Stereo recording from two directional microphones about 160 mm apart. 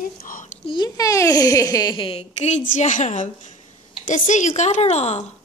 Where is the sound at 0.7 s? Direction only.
25° left (ahead or behind); by 5.2 s 45° left (ahead or behind).